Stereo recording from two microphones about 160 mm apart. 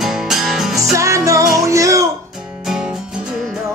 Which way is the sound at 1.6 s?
20° right (ahead or behind).